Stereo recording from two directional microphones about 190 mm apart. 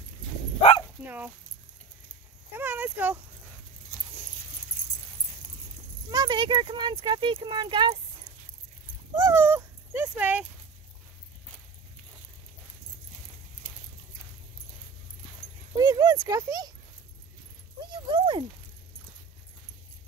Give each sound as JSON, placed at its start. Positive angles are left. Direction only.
{"t": 0.6, "sound": "bow-wow", "side_deg": 30}
{"t": 1.0, "sound": "speech", "side_deg": -10}
{"t": 2.5, "sound": "a sound", "side_deg": -10}
{"t": 6.0, "sound": "speech", "side_deg": -20}
{"t": 9.1, "sound": "speech", "side_deg": -15}
{"t": 15.8, "sound": "speech", "side_deg": -20}
{"t": 17.9, "sound": "speech", "side_deg": -25}